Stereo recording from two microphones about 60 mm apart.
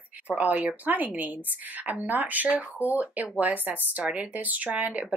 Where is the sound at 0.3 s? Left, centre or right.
Right.